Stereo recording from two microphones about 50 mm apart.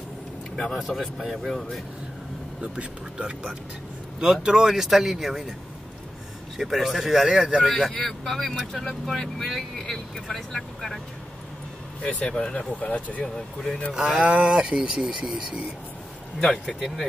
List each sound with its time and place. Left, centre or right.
0.7 s speech: centre
2.6 s speech: right; by 5.4 s centre
6.5 s speech: centre
7.7 s speech: centre
12.0 s speech: left
12.4 s speech: centre
13.9 s speech: centre
16.8 s speech: centre